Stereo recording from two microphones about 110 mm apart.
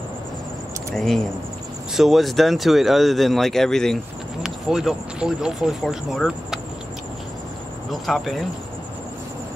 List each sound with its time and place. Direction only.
0.9 s speech: 5° left (ahead or behind)
7.9 s speech: centre (ahead or behind)